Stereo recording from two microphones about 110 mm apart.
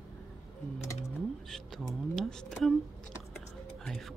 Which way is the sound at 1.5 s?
5° left (ahead or behind).